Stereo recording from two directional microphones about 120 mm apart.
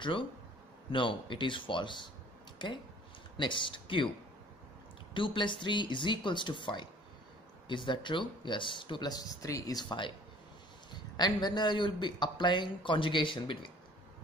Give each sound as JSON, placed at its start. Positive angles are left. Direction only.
{"t": 0.9, "sound": "speech", "side_deg": 45}
{"t": 3.3, "sound": "speech", "side_deg": 45}
{"t": 5.1, "sound": "speech", "side_deg": 45}